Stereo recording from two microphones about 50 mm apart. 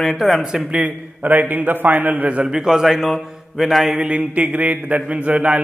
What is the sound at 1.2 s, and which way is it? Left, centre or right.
A man's voice, right.